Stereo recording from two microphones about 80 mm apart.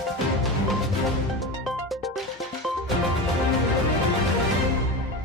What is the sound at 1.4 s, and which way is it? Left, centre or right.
Music, centre.